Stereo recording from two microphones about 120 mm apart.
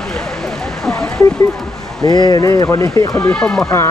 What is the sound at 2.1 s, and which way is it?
Speech, 35° left (ahead or behind).